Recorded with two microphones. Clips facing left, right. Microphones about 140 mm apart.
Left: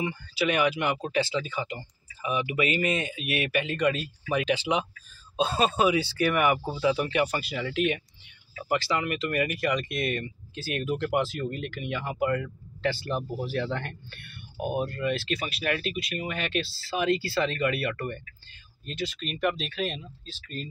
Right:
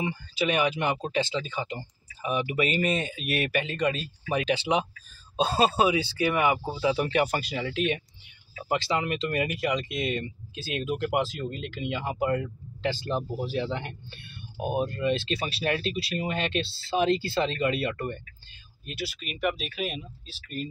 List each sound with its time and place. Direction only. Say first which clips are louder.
0.0 s speech: even; 25° right (ahead or behind)
6.1 s speech: left 1 dB; 20° right (ahead or behind)
6.9 s speech: right 1 dB; 35° right (ahead or behind)
18.9 s speech: left 3 dB; 10° right (ahead or behind)